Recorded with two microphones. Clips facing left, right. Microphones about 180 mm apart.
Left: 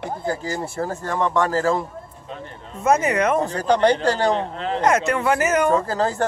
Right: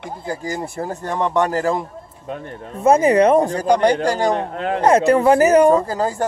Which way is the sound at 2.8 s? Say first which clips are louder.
Right 6 dB; 30° right (ahead or behind).